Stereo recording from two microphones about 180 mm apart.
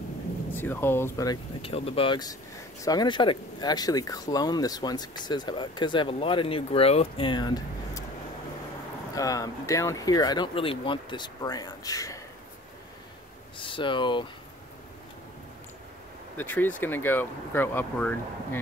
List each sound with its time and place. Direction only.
0.5 s speech: 10° left (ahead or behind)
1.7 s speech: 30° left (ahead or behind)
9.1 s speech: 20° left (ahead or behind)
13.6 s speech: 30° left (ahead or behind)
16.3 s speech: 10° left (ahead or behind)